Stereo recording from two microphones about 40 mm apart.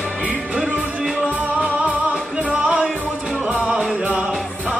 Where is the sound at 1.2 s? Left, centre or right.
Right.